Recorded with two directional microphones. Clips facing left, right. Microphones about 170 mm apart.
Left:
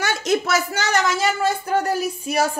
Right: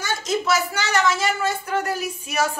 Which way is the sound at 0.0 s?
65° left (ahead or behind).